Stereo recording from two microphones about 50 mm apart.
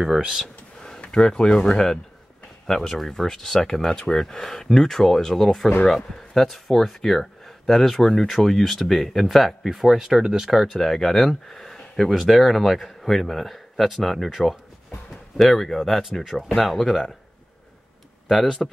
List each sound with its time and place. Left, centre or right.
0.0 s speech: centre
0.8 s speech: centre
10.5 s speech: centre
18.6 s speech: centre